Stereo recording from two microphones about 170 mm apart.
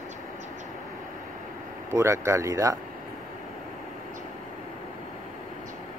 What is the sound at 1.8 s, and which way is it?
Speech, 15° right (ahead or behind).